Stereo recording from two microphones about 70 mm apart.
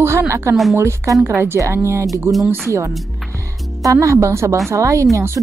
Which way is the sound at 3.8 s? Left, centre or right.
Right.